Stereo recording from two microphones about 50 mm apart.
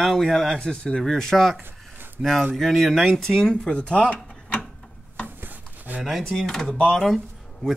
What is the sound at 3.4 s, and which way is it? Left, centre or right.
Speech, centre.